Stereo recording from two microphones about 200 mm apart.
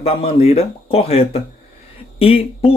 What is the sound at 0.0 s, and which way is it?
Speech, 30° left (ahead or behind).